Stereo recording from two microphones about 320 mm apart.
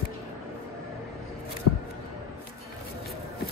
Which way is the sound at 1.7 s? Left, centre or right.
Left.